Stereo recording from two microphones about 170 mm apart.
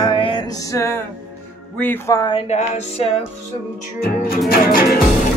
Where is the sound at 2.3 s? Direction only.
35° left (ahead or behind).